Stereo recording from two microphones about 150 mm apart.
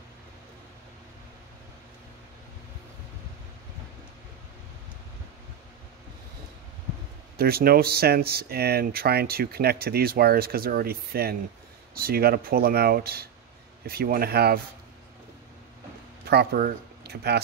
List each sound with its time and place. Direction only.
7.3 s speech: 90° right
13.8 s speech: 80° right
16.3 s speech: 90° right